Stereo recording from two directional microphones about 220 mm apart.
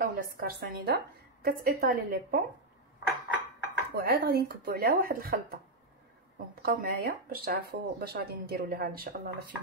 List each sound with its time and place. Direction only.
0.0 s speech: 40° right (ahead or behind)
3.9 s speech: 45° right (ahead or behind)